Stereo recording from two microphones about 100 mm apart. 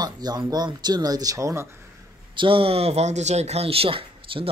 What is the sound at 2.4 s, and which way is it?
Speech, 60° right (ahead or behind).